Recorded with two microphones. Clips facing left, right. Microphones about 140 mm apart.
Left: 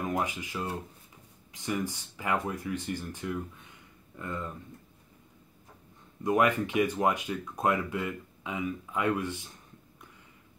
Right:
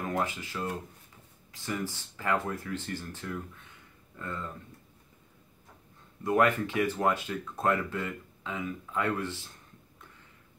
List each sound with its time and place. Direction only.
0.1 s speech: 15° left (ahead or behind)
6.2 s speech: 15° left (ahead or behind)